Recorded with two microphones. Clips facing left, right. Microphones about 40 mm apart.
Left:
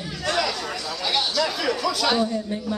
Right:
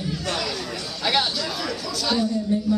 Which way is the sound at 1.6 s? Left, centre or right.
Left.